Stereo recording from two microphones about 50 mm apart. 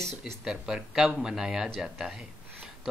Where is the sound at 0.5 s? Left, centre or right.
Centre.